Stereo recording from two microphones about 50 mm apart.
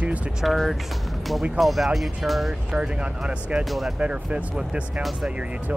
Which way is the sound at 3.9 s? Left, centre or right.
Right.